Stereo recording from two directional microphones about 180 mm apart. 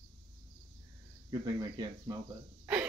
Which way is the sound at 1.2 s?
20° right (ahead or behind).